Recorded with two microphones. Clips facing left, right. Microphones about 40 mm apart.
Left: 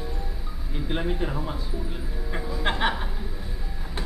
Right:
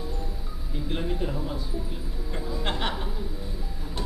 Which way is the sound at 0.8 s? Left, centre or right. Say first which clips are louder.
Left 2 dB; left.